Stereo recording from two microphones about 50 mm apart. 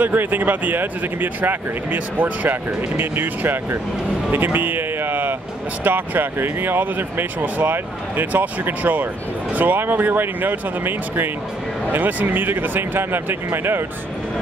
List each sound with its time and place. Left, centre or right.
0.0 s speech: right